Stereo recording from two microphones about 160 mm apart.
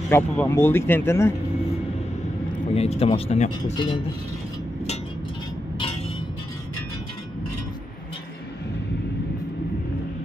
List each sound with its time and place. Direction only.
0.1 s speech: 15° left (ahead or behind)
2.7 s speech: 40° left (ahead or behind)